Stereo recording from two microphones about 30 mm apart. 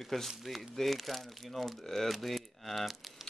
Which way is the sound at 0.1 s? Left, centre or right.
Centre.